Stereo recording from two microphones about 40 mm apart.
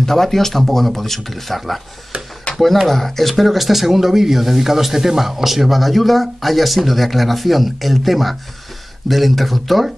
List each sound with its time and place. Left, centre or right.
0.0 s speech: centre
2.1 s a sound: right
2.5 s speech: centre